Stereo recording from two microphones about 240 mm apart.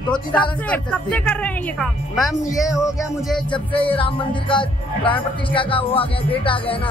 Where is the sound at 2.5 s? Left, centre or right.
Centre.